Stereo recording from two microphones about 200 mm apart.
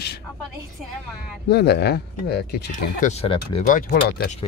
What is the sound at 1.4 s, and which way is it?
Speech, 55° left (ahead or behind).